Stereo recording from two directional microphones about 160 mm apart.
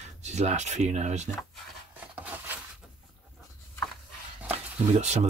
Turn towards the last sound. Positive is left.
turn(degrees=-45)  # may be behind; listen again after turning